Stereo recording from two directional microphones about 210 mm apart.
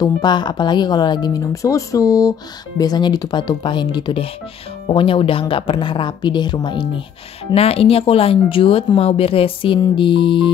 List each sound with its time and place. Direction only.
0.0 s speech: 20° left (ahead or behind)